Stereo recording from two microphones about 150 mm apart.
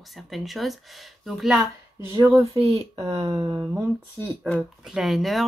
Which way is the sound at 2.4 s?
45° right (ahead or behind).